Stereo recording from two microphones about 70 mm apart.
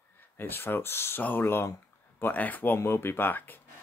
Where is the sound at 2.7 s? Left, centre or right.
Left.